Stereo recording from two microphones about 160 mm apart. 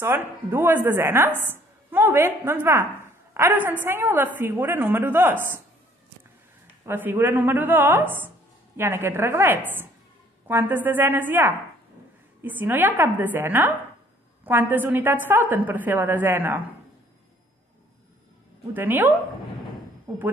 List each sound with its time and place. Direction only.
0.0 s a woman's voice: 15° right (ahead or behind)
6.9 s a woman's voice: 10° right (ahead or behind)
18.7 s a woman's voice: 10° right (ahead or behind)